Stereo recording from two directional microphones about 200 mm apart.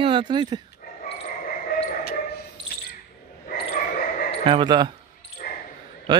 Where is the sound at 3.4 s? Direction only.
40° left (ahead or behind).